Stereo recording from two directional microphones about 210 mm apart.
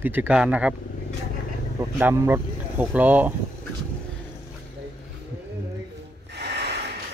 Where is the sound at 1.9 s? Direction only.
10° right (ahead or behind).